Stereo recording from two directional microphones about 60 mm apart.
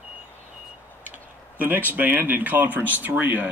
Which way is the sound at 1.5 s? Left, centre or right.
Right.